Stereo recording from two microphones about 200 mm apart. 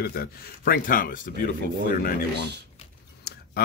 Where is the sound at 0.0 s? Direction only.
50° left (ahead or behind).